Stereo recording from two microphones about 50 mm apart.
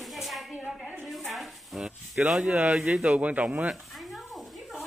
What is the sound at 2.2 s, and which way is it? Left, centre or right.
Speech, right.